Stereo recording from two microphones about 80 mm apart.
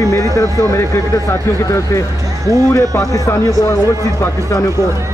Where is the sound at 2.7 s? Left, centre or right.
Left.